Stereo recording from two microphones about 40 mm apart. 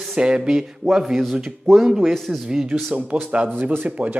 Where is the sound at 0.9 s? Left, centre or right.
Centre.